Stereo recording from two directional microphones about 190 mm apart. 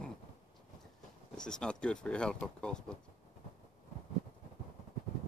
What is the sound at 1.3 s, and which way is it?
Speech, 5° left (ahead or behind).